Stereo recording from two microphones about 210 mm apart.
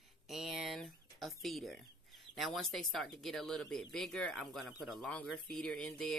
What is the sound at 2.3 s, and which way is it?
Speech, centre (ahead or behind).